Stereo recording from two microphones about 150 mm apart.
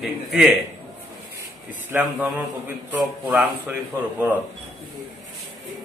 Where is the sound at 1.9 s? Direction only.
10° right (ahead or behind).